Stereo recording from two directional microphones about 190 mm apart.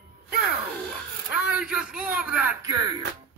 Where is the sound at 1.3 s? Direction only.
5° right (ahead or behind).